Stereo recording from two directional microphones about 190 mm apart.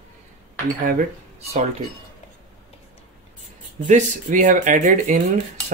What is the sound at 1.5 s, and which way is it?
Speech, 35° right (ahead or behind).